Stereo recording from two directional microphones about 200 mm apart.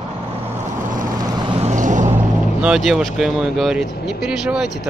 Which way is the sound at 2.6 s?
5° right (ahead or behind).